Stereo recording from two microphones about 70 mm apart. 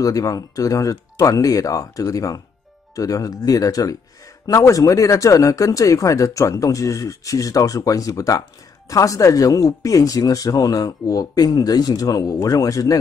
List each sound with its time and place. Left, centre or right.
0.0 s speech: left